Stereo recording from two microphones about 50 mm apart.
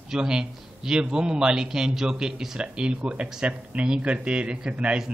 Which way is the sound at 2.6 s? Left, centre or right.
Right.